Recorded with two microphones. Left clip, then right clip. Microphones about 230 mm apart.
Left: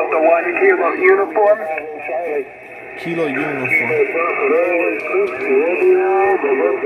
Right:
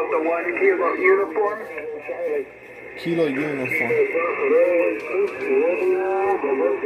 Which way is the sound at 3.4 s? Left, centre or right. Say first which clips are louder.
Left 6 dB; left.